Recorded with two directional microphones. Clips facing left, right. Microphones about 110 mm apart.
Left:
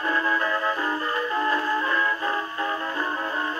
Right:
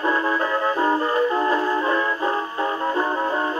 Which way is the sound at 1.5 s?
25° right (ahead or behind).